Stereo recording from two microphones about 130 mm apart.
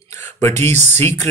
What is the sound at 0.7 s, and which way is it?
Speech, 60° right (ahead or behind).